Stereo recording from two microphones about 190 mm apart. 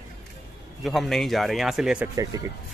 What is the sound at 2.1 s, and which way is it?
Speech, 15° right (ahead or behind).